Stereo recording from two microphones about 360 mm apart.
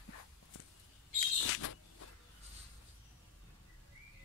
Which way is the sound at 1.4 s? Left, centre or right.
Left.